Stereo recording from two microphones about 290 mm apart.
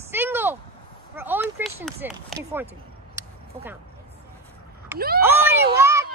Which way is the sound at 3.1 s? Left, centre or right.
Centre.